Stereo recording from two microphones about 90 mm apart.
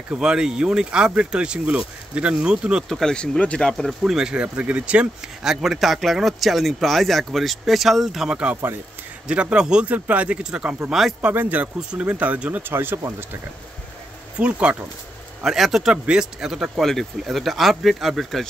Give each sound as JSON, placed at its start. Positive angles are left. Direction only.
{"t": 0.1, "sound": "speech", "side_deg": -10}
{"t": 2.9, "sound": "speech", "side_deg": 5}
{"t": 4.0, "sound": "speech", "side_deg": -10}
{"t": 11.1, "sound": "speech", "side_deg": -20}
{"t": 12.7, "sound": "speech", "side_deg": -25}
{"t": 14.4, "sound": "speech", "side_deg": -15}
{"t": 15.4, "sound": "speech", "side_deg": -5}